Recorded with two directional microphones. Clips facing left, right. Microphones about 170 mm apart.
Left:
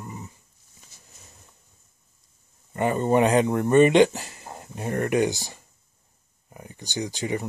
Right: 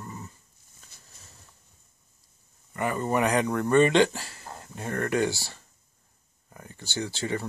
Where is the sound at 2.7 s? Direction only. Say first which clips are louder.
Left 5 dB; 25° left (ahead or behind).